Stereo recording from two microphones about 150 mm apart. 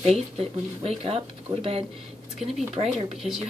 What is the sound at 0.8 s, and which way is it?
Speech, 40° right (ahead or behind).